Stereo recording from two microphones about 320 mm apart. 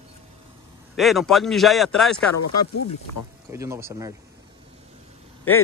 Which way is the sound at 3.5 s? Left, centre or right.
Centre.